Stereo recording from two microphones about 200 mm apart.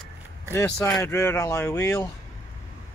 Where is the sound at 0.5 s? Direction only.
10° left (ahead or behind).